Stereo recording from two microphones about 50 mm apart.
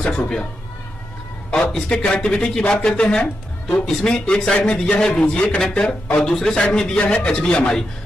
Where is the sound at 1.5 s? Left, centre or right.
Centre.